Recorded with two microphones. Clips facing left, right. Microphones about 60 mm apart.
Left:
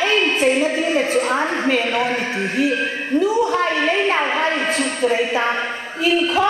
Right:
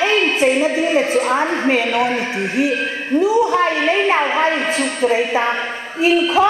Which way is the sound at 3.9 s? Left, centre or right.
Right.